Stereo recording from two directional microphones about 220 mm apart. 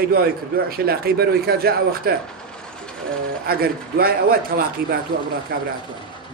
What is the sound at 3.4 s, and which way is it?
A man's voice, 45° right (ahead or behind).